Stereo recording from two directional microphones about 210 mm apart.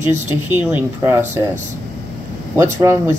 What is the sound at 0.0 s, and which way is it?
Speech, 35° right (ahead or behind).